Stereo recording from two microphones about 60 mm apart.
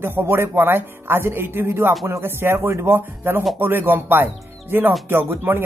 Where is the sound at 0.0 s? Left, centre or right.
Right.